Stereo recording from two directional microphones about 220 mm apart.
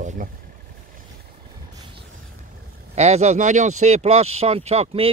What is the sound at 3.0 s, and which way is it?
Speech, 30° right (ahead or behind).